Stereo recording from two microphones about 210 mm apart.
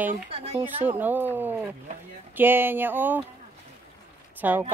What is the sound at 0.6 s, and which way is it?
Speech, 10° right (ahead or behind).